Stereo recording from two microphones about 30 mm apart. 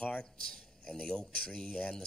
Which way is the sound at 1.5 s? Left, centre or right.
Left.